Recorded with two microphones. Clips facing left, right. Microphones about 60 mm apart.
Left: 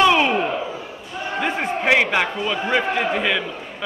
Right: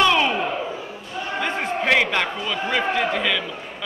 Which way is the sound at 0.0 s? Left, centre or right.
Centre.